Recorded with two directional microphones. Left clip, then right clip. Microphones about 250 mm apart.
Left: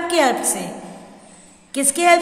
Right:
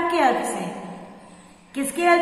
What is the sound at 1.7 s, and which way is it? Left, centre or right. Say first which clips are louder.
Speech: left 4 dB; left.